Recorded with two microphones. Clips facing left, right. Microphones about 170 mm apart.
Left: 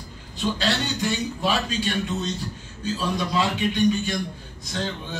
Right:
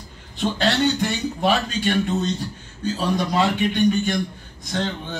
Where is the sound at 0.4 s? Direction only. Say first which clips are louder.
Right 5 dB; 55° right (ahead or behind).